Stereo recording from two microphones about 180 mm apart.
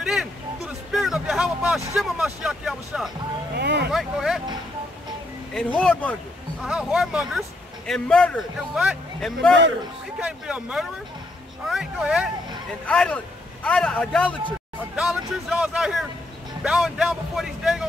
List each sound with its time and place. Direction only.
0.0 s a sound: 5° right (ahead or behind)
0.9 s speech: centre (ahead or behind)
3.5 s speech: 65° right (ahead or behind)
3.9 s a man's voice: centre (ahead or behind)
5.5 s speech: 5° left (ahead or behind)
6.6 s a man's voice: 5° right (ahead or behind)
12.8 s a man's voice: 5° left (ahead or behind)